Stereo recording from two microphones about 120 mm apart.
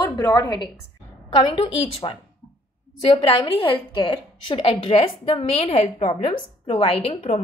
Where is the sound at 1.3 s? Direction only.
45° left (ahead or behind).